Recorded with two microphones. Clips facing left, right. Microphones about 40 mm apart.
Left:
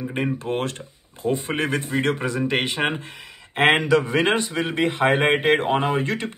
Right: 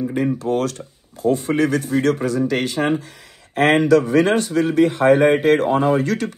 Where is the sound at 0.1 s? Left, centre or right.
Left.